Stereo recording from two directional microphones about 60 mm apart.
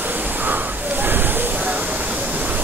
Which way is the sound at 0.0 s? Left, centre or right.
Right.